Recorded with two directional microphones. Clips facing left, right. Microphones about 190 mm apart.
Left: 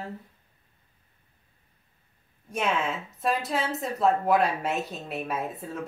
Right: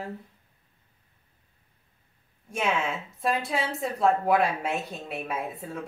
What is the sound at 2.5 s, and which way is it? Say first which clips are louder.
A woman's voice: even; centre (ahead or behind).